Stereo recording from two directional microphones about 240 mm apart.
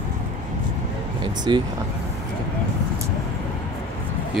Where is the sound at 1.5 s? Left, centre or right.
Centre.